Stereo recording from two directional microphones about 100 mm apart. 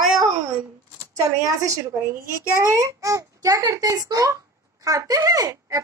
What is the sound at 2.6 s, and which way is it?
A child's voice, 35° right (ahead or behind).